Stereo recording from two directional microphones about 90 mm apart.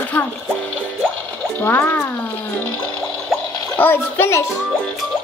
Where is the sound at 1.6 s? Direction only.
20° left (ahead or behind).